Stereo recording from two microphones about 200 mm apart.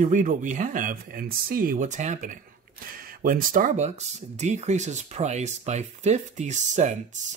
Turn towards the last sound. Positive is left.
turn(degrees=-35)  # may be behind; listen again after turning